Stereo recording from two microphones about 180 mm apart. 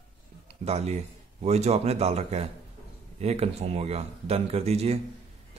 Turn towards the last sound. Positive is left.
turn(degrees=-35)  # may be behind; listen again after turning